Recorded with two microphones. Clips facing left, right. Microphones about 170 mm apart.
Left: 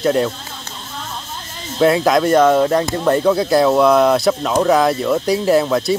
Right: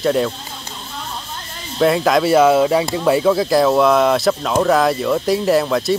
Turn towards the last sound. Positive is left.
turn(degrees=0)  # may be behind; listen again after turning